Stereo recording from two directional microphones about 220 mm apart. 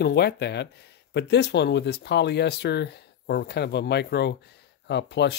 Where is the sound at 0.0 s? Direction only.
50° left (ahead or behind).